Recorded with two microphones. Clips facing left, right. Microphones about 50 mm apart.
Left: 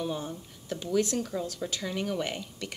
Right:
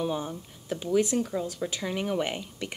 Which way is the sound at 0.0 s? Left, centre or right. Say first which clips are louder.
Right 3 dB; centre.